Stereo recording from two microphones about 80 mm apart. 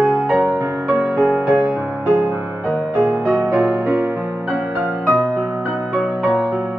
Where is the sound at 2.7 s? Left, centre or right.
Centre.